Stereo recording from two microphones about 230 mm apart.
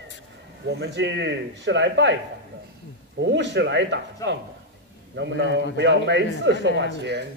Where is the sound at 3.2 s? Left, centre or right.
Right.